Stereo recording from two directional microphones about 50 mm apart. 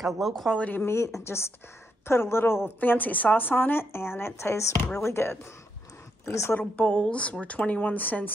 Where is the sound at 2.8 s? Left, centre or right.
Left.